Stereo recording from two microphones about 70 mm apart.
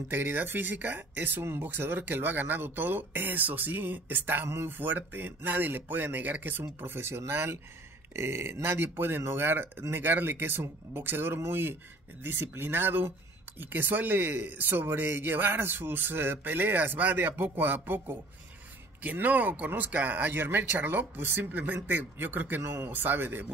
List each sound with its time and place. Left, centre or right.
0.1 s speech: right
22.6 s speech: right
22.8 s speech: right